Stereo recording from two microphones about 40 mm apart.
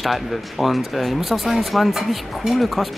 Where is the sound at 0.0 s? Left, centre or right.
Centre.